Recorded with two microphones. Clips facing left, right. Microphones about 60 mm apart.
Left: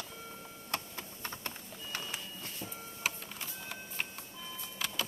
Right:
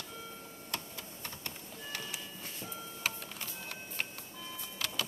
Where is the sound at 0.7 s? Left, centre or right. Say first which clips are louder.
Left 3 dB; left.